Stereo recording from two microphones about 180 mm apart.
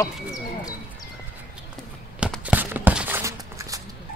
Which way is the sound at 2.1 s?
5° right (ahead or behind).